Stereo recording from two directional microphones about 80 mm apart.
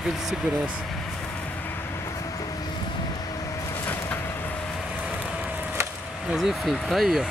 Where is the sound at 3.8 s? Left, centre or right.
Left.